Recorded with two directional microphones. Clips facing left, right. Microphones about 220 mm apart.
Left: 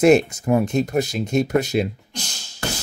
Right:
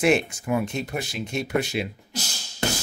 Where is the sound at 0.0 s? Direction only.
40° left (ahead or behind).